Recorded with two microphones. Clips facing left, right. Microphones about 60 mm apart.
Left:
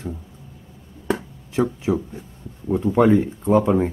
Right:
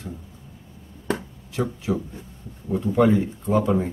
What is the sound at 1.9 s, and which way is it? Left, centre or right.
Speech, left.